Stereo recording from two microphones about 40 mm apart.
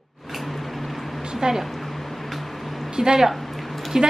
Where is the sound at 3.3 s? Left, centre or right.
Centre.